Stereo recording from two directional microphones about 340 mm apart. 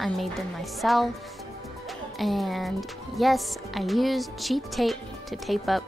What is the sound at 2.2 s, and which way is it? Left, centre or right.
Speech, centre.